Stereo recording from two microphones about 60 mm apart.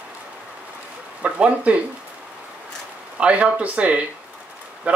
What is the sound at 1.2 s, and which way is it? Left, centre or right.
Speech, centre.